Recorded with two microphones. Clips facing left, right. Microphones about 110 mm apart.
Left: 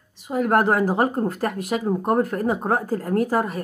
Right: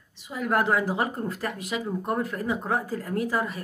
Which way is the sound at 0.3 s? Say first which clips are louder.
Left 5 dB; 50° left (ahead or behind).